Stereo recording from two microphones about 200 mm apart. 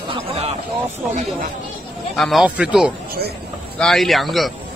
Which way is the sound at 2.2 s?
Centre (ahead or behind).